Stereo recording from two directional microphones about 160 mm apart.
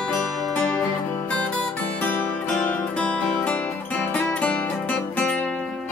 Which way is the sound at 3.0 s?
5° left (ahead or behind).